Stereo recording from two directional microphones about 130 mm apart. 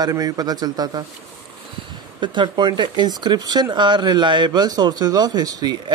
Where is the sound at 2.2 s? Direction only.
35° right (ahead or behind).